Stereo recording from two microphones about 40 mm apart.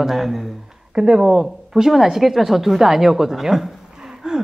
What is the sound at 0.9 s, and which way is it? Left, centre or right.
A woman's voice, right.